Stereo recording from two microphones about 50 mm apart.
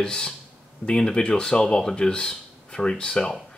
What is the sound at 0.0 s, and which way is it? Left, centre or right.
Speech, centre.